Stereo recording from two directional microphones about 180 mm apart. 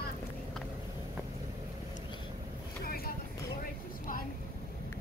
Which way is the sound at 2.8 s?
55° left (ahead or behind).